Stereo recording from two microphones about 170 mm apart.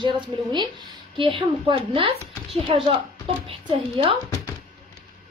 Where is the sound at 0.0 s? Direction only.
25° right (ahead or behind).